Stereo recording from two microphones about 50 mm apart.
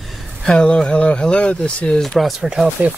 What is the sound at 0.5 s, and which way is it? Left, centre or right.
Speech, centre.